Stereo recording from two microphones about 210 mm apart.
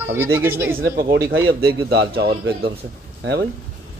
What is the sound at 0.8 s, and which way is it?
A man's voice, 45° right (ahead or behind).